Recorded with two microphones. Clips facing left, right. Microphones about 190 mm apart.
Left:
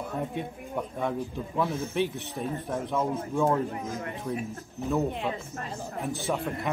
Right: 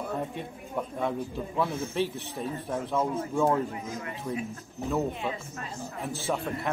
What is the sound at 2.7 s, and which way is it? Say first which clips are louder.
Speech: right 1 dB; centre (ahead or behind).